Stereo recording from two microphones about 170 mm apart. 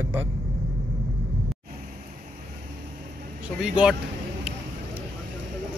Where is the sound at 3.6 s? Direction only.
5° right (ahead or behind).